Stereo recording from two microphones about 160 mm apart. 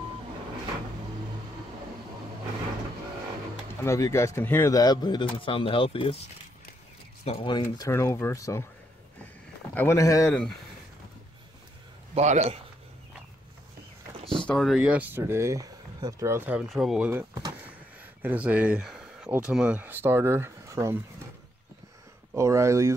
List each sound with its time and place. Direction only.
3.8 s speech: 20° left (ahead or behind); by 6.2 s 35° left (ahead or behind)
7.2 s speech: 35° left (ahead or behind)
7.6 s speech: 20° left (ahead or behind)
9.8 s speech: 20° left (ahead or behind)
12.1 s a man's voice: 45° right (ahead or behind)
14.4 s speech: 5° left (ahead or behind)
17.3 s speech: 25° right (ahead or behind)
18.2 s speech: 10° right (ahead or behind)
22.3 s speech: 20° right (ahead or behind)